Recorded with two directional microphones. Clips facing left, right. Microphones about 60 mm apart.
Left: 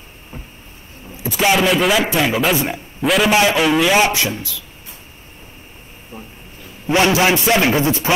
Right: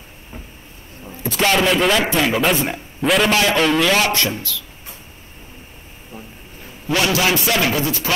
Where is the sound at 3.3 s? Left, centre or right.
Centre.